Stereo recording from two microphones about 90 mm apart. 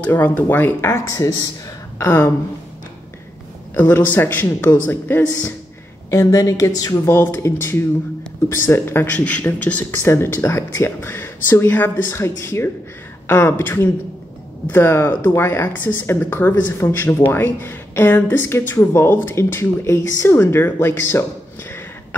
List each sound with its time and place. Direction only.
0.0 s speech: 20° left (ahead or behind)
1.0 s a woman's voice: 40° left (ahead or behind)
2.0 s speech: 30° left (ahead or behind)
3.7 s speech: 20° left (ahead or behind)
6.0 s a woman's voice: 35° left (ahead or behind)
7.2 s speech: 25° left (ahead or behind)